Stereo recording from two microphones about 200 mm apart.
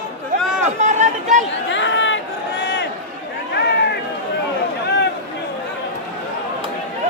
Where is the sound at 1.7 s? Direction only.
65° left (ahead or behind).